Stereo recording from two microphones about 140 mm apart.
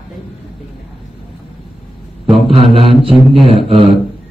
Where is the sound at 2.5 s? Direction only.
40° right (ahead or behind).